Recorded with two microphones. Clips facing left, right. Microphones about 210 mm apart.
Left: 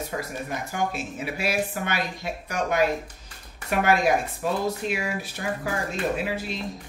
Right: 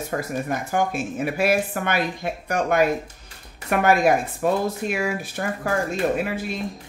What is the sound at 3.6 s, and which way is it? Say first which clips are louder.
Speech: right 3 dB; 55° right (ahead or behind).